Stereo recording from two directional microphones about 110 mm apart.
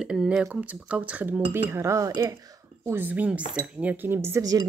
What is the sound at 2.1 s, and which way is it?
Cutlery, 30° right (ahead or behind).